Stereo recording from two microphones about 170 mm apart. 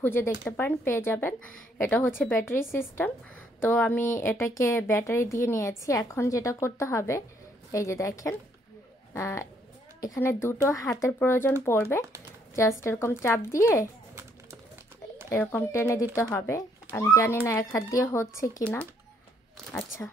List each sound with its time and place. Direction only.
0.0 s a woman's voice: 10° left (ahead or behind)
15.2 s a woman's voice: 15° left (ahead or behind)
18.6 s a woman's voice: 5° left (ahead or behind)